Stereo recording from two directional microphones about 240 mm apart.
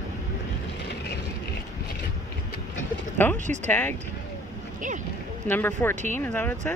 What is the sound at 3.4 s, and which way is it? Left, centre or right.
Speech, right.